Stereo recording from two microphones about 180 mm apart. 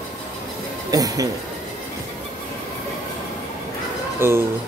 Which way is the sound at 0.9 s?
20° right (ahead or behind).